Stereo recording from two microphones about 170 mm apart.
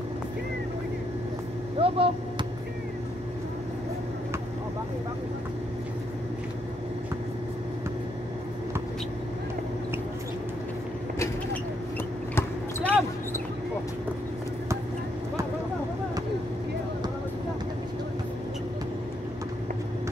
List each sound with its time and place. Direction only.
1.8 s vehicle: 30° right (ahead or behind)
12.4 s basketball bounce: 15° left (ahead or behind)